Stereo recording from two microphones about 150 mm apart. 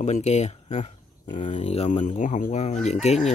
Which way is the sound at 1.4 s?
40° left (ahead or behind).